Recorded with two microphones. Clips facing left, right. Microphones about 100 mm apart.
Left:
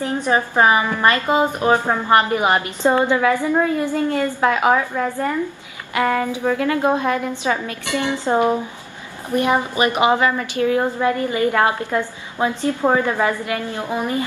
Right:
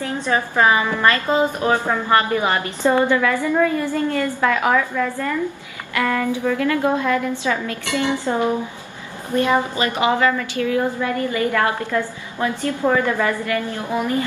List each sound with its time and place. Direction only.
0.0 s a woman's voice: 20° left (ahead or behind)